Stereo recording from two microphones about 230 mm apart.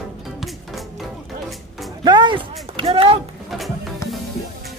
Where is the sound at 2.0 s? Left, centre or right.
Centre.